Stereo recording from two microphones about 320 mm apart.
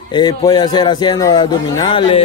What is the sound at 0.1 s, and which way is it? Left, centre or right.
A man's voice, centre.